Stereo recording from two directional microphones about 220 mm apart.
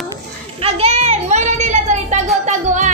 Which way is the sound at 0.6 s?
30° right (ahead or behind).